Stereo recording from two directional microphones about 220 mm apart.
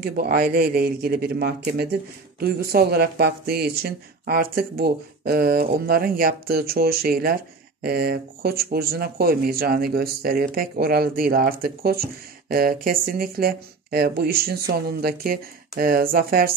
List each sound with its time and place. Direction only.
0.0 s speech: 45° right (ahead or behind)